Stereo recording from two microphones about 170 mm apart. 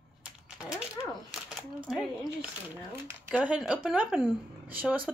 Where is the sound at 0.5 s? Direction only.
20° left (ahead or behind).